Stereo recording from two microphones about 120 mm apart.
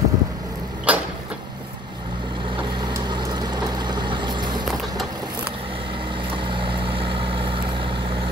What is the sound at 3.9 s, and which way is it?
Vehicle, 40° right (ahead or behind).